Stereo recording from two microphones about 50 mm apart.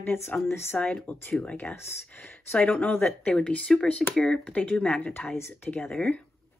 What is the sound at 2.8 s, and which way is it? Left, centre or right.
Speech, left.